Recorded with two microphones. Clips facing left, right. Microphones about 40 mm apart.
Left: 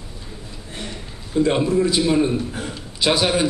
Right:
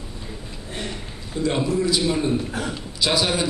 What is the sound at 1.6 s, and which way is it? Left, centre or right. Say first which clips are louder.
Speech: left 3 dB; left.